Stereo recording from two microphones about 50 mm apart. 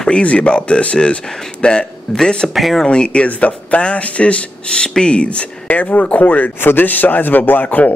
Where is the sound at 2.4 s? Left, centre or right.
Centre.